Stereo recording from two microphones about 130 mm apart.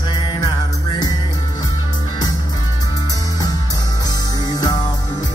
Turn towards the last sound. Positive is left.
turn(degrees=30)  # may be behind; listen again after turning